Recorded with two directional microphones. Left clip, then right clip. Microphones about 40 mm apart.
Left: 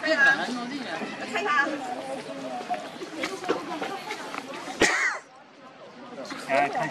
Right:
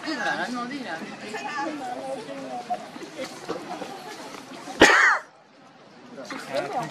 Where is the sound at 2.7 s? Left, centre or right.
Left.